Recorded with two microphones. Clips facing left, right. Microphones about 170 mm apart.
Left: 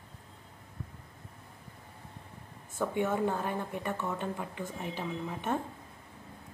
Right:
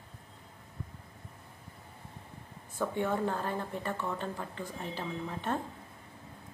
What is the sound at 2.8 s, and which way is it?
Speech, 10° left (ahead or behind).